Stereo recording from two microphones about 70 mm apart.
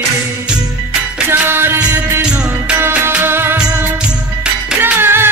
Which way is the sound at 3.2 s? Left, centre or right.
Right.